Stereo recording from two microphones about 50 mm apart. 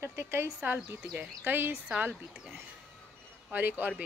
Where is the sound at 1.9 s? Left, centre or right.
Right.